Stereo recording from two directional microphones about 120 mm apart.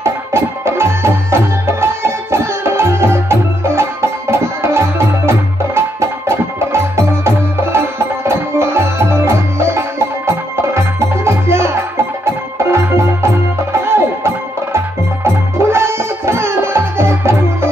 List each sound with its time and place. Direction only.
0.0 s music: 20° right (ahead or behind)
12.7 s music: 20° right (ahead or behind)